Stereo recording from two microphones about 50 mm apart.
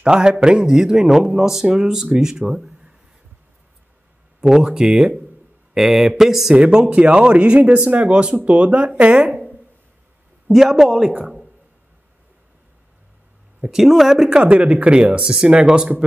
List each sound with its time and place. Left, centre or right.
0.0 s a man's voice: centre
4.4 s a man's voice: centre
6.5 s speech: centre
10.5 s a man's voice: centre
13.6 s a man's voice: centre
14.4 s speech: right